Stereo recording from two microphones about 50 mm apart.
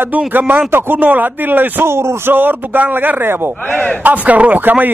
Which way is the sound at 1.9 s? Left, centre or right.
Right.